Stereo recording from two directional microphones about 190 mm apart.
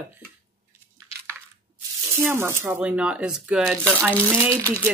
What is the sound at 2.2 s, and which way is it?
Speech, 10° right (ahead or behind).